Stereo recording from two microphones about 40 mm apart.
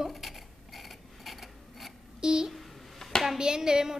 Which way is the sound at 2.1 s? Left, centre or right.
Centre.